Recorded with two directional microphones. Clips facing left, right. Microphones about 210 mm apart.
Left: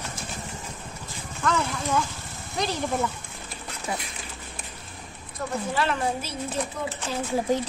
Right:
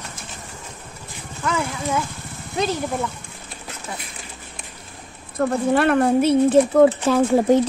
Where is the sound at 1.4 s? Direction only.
10° right (ahead or behind).